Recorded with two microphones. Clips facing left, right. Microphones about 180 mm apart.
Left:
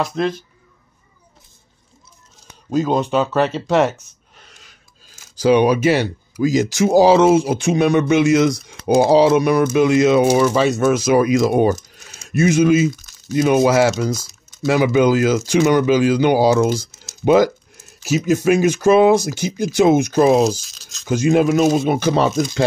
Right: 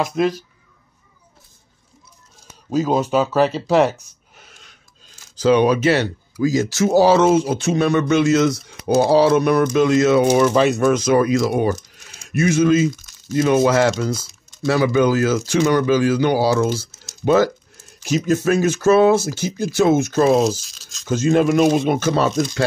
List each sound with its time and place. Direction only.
0.1 s speech: 5° right (ahead or behind)
2.7 s speech: 5° right (ahead or behind)
11.4 s speech: 20° left (ahead or behind); by 14.1 s 5° left (ahead or behind)
14.1 s typing: centre (ahead or behind)
14.7 s speech: 15° left (ahead or behind)
20.3 s speech: centre (ahead or behind)
21.1 s speech: 10° left (ahead or behind)
21.5 s speech: centre (ahead or behind)